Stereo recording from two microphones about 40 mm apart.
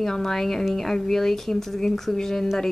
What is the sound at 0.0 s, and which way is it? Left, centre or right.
A woman's voice, centre.